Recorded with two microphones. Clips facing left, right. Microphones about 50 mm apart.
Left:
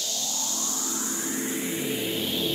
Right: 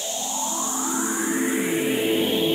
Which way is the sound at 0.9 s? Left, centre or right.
Right.